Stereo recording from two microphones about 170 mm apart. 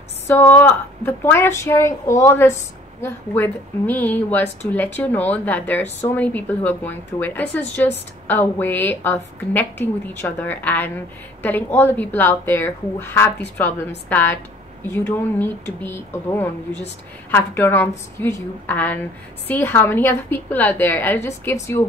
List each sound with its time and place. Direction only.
0.3 s speech: 10° left (ahead or behind)